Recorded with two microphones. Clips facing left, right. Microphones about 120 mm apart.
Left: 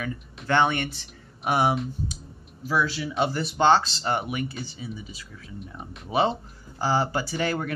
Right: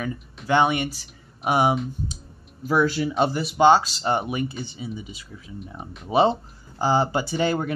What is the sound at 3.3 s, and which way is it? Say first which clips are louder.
Speech: right 3 dB; 10° right (ahead or behind).